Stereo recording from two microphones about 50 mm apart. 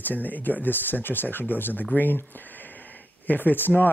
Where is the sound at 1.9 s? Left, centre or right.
Left.